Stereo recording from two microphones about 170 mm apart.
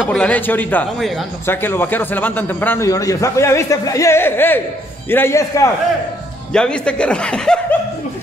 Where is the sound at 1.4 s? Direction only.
15° left (ahead or behind).